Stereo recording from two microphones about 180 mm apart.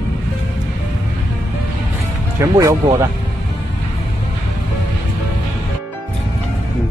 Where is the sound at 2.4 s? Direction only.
15° right (ahead or behind).